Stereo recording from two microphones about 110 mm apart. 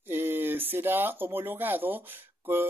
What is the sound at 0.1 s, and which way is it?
Speech, 20° right (ahead or behind).